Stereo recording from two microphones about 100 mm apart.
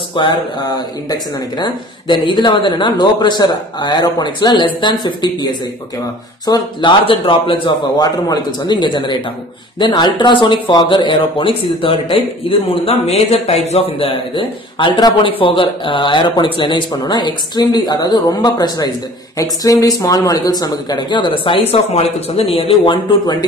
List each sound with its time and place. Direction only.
0.1 s speech: 55° left (ahead or behind)
8.0 s speech: 40° left (ahead or behind)
15.3 s speech: 60° left (ahead or behind)